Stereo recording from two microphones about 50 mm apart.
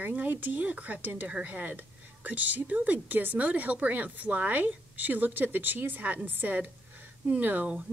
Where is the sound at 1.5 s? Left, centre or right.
Right.